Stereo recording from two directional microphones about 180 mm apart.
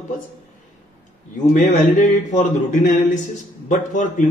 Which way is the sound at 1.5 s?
45° left (ahead or behind).